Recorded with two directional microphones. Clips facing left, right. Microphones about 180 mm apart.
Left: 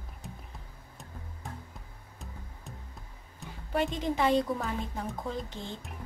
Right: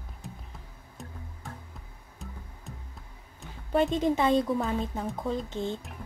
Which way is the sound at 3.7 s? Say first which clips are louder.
Right 5 dB; 25° right (ahead or behind).